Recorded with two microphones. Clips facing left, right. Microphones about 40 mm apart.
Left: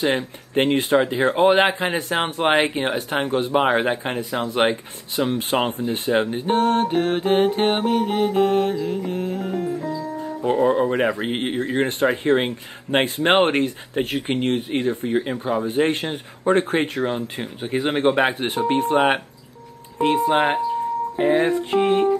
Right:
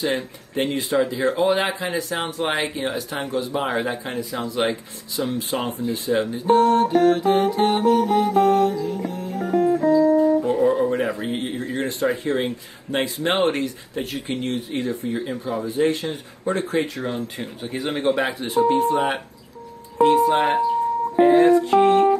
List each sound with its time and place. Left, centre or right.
0.0 s speech: left
6.3 s music: left
9.5 s music: right
10.4 s speech: left
17.0 s speech: left
18.4 s speech: left
20.0 s speech: left
21.2 s music: left